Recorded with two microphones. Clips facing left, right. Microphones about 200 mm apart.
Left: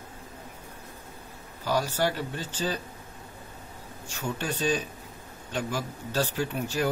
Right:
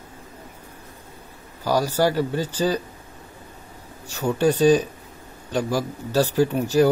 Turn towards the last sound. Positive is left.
turn(degrees=-40)  # may be behind; listen again after turning